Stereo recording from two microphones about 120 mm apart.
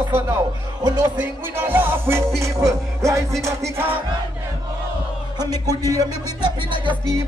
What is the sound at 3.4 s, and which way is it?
Music, 20° right (ahead or behind).